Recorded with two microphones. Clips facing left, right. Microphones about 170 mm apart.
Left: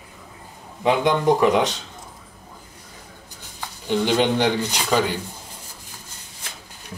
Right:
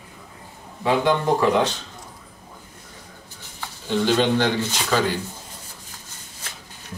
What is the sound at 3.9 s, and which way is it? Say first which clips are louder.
Speech: even; 15° left (ahead or behind).